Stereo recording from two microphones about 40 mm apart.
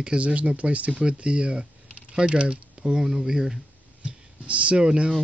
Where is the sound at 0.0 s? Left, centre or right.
Right.